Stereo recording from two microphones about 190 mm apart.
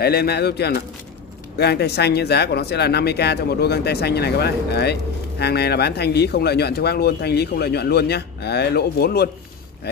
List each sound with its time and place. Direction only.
0.0 s speech: 55° left (ahead or behind)